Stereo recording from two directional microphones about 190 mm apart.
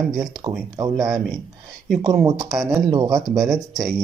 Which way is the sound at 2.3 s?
15° right (ahead or behind).